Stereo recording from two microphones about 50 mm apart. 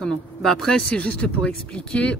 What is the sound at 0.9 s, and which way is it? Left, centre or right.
Speech, left.